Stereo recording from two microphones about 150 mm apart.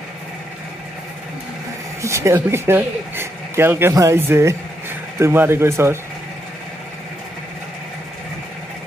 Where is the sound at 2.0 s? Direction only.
20° right (ahead or behind).